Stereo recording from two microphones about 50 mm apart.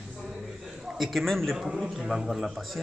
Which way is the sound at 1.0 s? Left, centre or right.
Centre.